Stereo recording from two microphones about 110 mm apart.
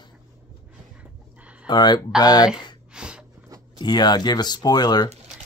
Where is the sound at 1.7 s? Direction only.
40° left (ahead or behind).